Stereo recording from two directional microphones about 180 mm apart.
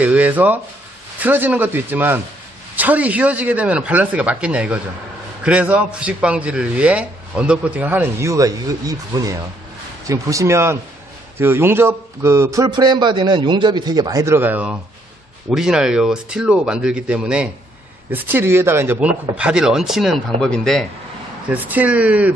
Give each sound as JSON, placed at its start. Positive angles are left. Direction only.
{"t": 0.0, "sound": "a man's voice", "side_deg": -10}
{"t": 21.5, "sound": "a man's voice", "side_deg": -10}